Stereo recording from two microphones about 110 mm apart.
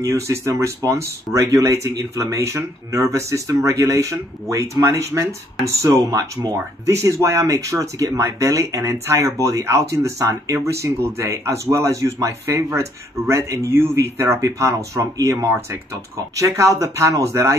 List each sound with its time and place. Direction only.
0.0 s speech: 25° right (ahead or behind)